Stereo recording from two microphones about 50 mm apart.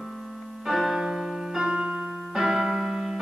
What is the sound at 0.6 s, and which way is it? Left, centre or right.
Music, centre.